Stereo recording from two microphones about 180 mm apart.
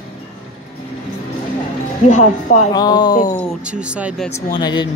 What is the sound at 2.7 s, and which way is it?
Speech, 20° left (ahead or behind).